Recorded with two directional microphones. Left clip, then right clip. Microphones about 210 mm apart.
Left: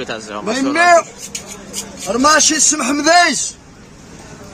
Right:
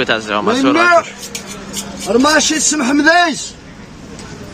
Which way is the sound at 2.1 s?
25° left (ahead or behind).